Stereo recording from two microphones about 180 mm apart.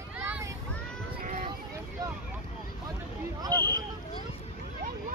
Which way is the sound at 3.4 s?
20° right (ahead or behind).